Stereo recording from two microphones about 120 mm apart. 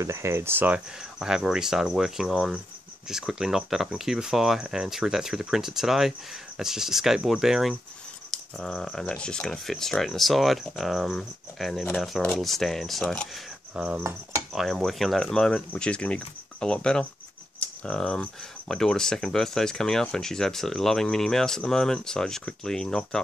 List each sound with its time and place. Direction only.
0.0 s speech: 20° right (ahead or behind); by 13.3 s 5° left (ahead or behind)
13.7 s cutlery: 5° right (ahead or behind)
14.5 s speech: centre (ahead or behind)